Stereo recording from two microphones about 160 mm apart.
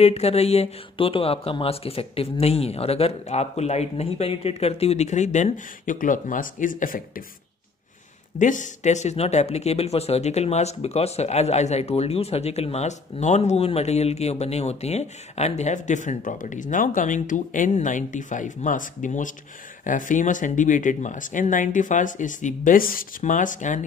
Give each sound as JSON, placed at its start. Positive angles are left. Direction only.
{"t": 0.0, "sound": "speech", "side_deg": 40}
{"t": 8.4, "sound": "speech", "side_deg": 50}